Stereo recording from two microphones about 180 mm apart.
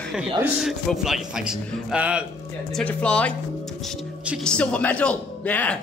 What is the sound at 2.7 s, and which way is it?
Speech, 5° left (ahead or behind).